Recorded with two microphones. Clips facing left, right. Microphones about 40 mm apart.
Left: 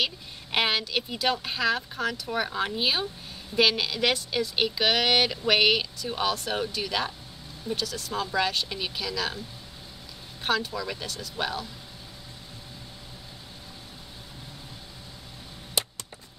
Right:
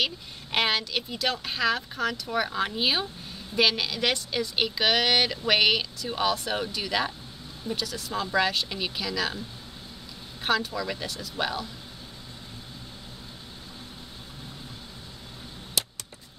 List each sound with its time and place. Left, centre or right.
0.0 s a woman's voice: centre
10.4 s a woman's voice: centre